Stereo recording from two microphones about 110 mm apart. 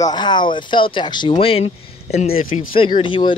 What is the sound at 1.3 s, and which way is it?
Speech, 65° left (ahead or behind).